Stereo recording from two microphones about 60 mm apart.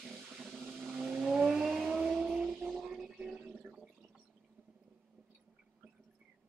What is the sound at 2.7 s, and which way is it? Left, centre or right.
Music, centre.